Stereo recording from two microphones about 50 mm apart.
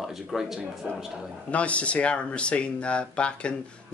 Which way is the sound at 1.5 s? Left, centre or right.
Left.